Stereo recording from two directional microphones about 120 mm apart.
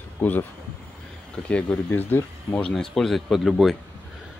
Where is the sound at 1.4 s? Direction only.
10° left (ahead or behind).